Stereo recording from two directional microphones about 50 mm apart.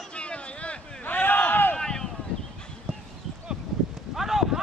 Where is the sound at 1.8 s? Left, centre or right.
Centre.